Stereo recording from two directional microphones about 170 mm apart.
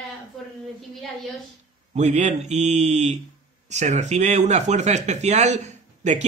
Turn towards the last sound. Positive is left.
turn(degrees=-45)  # may be behind; listen again after turning